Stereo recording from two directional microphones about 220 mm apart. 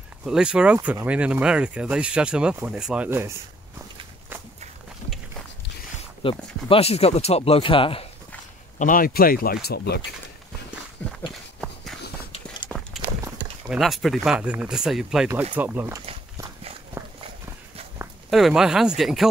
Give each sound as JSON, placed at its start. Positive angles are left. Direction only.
{"t": 0.2, "sound": "speech", "side_deg": -5}
{"t": 6.2, "sound": "speech", "side_deg": 25}
{"t": 8.7, "sound": "speech", "side_deg": 40}
{"t": 11.1, "sound": "walk", "side_deg": 0}
{"t": 12.6, "sound": "horse", "side_deg": 0}
{"t": 13.7, "sound": "speech", "side_deg": 0}
{"t": 17.0, "sound": "walk", "side_deg": -10}
{"t": 18.3, "sound": "speech", "side_deg": 0}